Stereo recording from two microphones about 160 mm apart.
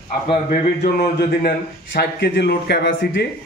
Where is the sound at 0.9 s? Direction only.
85° left.